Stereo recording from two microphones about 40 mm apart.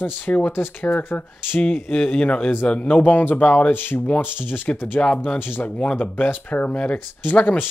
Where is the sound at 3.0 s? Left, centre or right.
Left.